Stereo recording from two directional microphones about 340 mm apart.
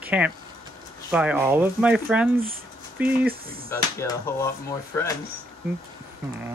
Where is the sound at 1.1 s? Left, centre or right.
Centre.